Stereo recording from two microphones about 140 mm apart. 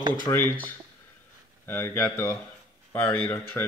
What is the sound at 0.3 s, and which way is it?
Speech, 30° left (ahead or behind).